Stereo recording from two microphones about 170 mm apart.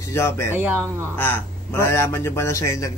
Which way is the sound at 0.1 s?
15° left (ahead or behind).